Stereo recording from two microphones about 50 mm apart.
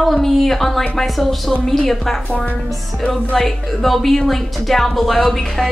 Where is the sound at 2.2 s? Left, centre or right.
Left.